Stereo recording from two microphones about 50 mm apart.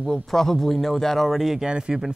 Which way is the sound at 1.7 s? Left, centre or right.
Centre.